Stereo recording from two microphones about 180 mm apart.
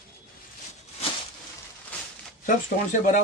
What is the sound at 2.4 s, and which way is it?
Speech, 45° left (ahead or behind).